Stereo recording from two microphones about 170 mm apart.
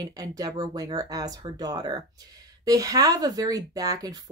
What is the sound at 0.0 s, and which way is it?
Speech, 20° right (ahead or behind).